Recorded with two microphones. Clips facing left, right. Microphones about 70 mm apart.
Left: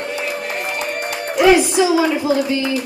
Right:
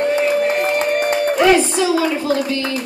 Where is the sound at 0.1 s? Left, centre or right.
Right.